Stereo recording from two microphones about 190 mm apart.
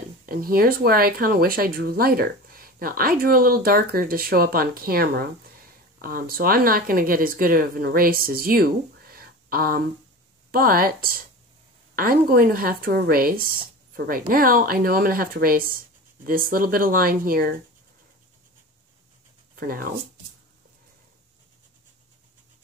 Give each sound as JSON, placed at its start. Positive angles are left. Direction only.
{"t": 0.3, "sound": "speech", "side_deg": -50}
{"t": 19.5, "sound": "speech", "side_deg": -50}